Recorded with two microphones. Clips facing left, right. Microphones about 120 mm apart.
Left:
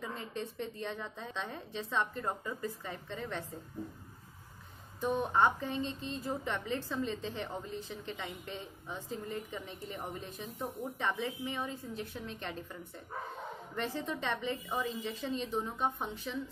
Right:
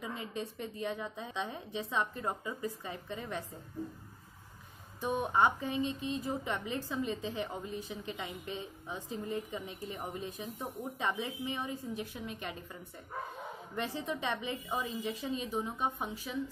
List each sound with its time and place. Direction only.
0.0 s a woman's voice: 15° right (ahead or behind)
5.0 s a woman's voice: 15° right (ahead or behind)
13.7 s a woman's voice: 15° right (ahead or behind)